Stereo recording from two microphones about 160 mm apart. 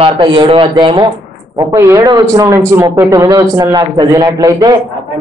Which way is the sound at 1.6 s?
20° right (ahead or behind).